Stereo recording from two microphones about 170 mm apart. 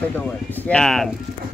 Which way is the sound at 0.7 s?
Centre (ahead or behind).